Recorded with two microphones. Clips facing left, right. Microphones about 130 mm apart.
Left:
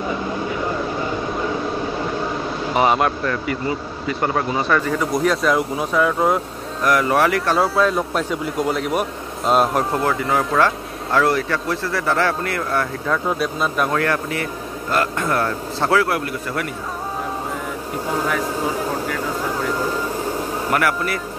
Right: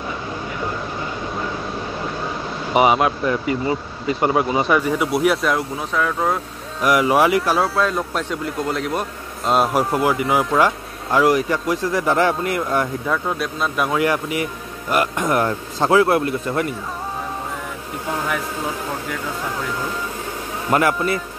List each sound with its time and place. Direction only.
2.7 s speech: 10° right (ahead or behind)
4.2 s speech: 15° right (ahead or behind)
5.9 s speech: 10° left (ahead or behind)
6.8 s speech: 15° right (ahead or behind)
7.5 s speech: centre (ahead or behind); by 13.1 s 15° right (ahead or behind)
13.1 s speech: centre (ahead or behind)
13.9 s speech: 15° right (ahead or behind)
19.0 s speech: centre (ahead or behind)
20.7 s speech: 25° right (ahead or behind)